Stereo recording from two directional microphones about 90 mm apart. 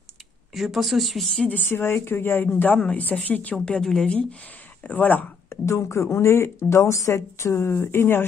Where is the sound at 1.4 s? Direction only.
20° left (ahead or behind).